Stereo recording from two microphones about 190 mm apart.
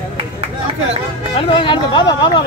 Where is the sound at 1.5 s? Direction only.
25° left (ahead or behind).